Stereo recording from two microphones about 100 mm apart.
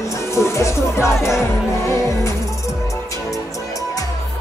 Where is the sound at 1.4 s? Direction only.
30° left (ahead or behind).